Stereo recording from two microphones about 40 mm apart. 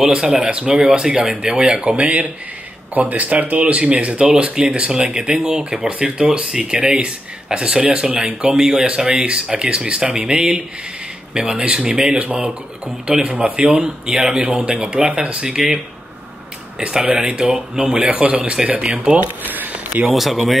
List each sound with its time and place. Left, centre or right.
0.1 s speech: right
2.9 s speech: right; by 15.8 s centre
16.9 s speech: centre
18.1 s speech: right
19.4 s a sound: right
20.1 s speech: centre